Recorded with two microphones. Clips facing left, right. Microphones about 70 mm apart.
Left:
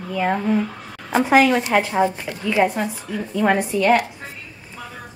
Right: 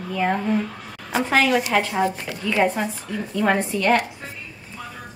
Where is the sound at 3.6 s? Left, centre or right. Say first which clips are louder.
Left 3 dB; centre.